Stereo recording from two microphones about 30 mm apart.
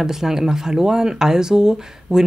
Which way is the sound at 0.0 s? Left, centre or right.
Centre.